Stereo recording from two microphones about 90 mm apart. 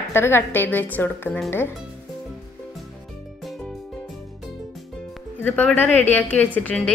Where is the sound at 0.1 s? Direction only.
25° left (ahead or behind).